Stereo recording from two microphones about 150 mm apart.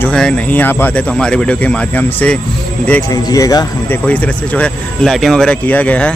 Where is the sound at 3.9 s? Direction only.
10° left (ahead or behind).